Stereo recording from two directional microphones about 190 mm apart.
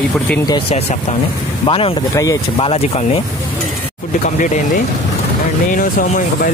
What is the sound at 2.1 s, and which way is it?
Speech, 15° left (ahead or behind).